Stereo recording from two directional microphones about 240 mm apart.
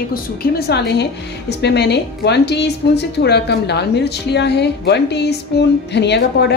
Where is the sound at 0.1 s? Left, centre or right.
Left.